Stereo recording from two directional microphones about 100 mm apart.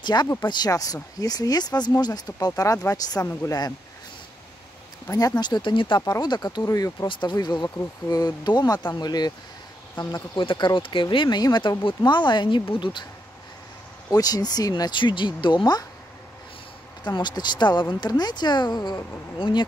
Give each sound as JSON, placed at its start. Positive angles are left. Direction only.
{"t": 0.0, "sound": "speech", "side_deg": 45}
{"t": 5.1, "sound": "speech", "side_deg": 40}
{"t": 6.0, "sound": "speech", "side_deg": 40}
{"t": 6.7, "sound": "speech", "side_deg": 35}
{"t": 7.1, "sound": "speech", "side_deg": 50}
{"t": 10.4, "sound": "speech", "side_deg": 55}
{"t": 14.1, "sound": "speech", "side_deg": 40}
{"t": 17.0, "sound": "speech", "side_deg": 45}